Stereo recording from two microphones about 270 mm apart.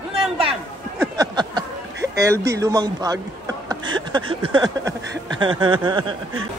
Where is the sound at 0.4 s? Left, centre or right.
Centre.